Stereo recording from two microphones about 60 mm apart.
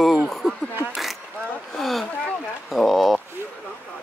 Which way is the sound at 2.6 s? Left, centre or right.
Centre.